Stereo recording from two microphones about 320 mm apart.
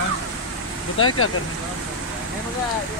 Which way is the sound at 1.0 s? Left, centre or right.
Left.